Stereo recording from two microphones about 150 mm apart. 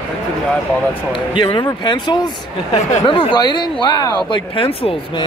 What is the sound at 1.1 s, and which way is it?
Speech, 35° left (ahead or behind).